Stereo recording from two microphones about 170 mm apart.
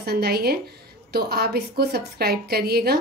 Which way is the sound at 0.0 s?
70° right (ahead or behind).